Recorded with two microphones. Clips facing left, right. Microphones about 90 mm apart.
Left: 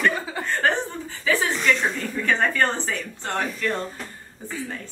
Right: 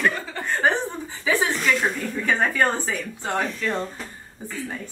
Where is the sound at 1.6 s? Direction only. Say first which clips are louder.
Even; 5° right (ahead or behind).